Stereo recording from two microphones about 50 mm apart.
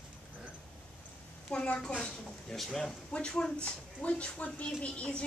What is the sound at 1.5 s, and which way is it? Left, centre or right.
Speech, centre.